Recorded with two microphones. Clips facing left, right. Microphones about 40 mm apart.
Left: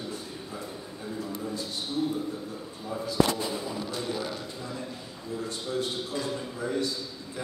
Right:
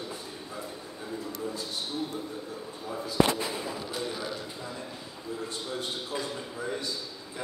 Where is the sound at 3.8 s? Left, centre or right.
Centre.